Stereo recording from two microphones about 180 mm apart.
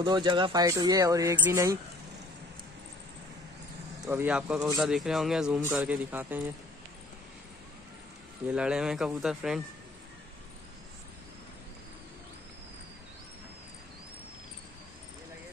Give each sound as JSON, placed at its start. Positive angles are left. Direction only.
{"t": 0.0, "sound": "speech", "side_deg": -25}
{"t": 4.0, "sound": "speech", "side_deg": -10}
{"t": 8.5, "sound": "speech", "side_deg": -5}